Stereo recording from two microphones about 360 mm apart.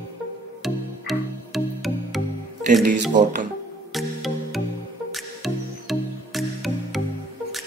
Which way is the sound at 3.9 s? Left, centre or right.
Centre.